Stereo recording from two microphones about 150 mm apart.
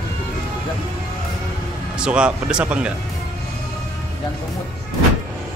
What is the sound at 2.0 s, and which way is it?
Speech, 5° right (ahead or behind).